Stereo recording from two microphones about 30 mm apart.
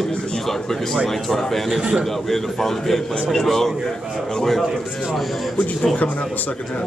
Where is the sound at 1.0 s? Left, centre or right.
Centre.